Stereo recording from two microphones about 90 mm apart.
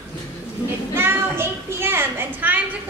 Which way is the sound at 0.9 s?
25° right (ahead or behind).